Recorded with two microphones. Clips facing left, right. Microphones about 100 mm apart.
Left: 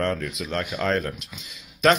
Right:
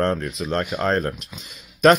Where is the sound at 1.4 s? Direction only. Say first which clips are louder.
Right 5 dB; 45° right (ahead or behind).